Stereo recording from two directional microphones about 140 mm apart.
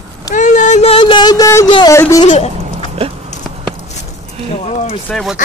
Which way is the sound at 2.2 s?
60° left (ahead or behind).